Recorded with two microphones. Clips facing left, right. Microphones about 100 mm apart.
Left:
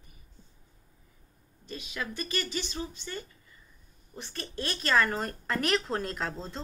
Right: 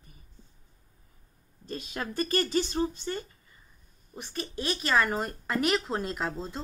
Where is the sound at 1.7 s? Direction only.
40° right (ahead or behind).